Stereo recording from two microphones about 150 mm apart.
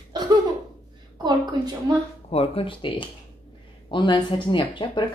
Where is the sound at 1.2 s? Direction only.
25° right (ahead or behind).